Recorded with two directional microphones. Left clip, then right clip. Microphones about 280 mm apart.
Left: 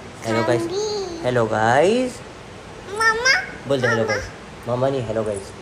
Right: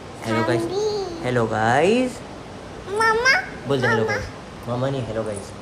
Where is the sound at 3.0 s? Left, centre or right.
Centre.